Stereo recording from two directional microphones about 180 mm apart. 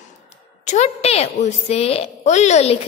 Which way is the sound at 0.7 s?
35° left (ahead or behind).